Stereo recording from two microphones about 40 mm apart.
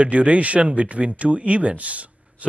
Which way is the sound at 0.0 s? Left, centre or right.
Right.